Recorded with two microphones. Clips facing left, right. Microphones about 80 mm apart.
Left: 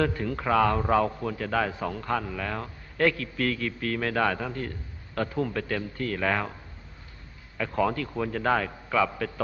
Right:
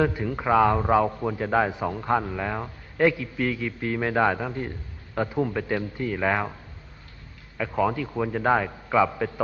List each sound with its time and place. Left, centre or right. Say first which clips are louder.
0.0 s a man's voice: right 2 dB; centre
7.5 s a man's voice: right 2 dB; centre